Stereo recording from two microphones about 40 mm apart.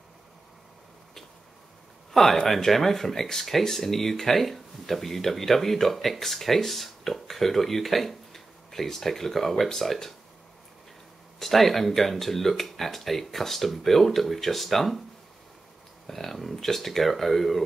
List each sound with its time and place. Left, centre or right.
2.1 s speech: centre
11.3 s speech: centre
16.1 s speech: centre